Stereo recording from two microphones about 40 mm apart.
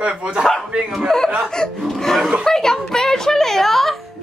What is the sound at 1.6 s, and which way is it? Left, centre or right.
Speech, centre.